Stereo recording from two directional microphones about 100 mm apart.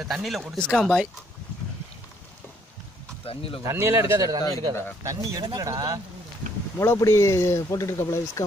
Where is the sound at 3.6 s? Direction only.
25° right (ahead or behind).